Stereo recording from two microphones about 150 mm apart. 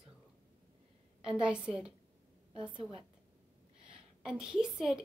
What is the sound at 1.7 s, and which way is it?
Speech, centre (ahead or behind).